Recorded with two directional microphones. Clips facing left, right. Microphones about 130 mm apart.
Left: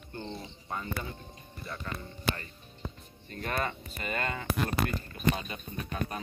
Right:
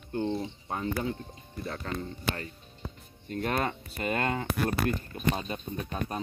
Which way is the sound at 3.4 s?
60° right (ahead or behind).